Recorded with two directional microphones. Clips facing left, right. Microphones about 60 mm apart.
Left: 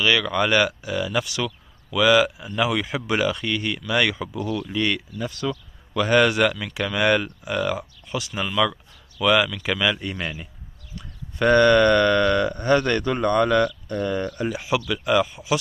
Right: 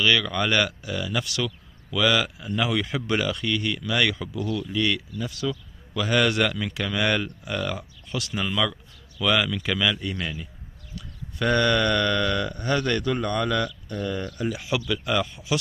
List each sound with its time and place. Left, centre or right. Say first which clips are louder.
0.0 s speech: left 2 dB; centre
4.6 s speech: left 1 dB; left
6.2 s speech: left 3 dB; centre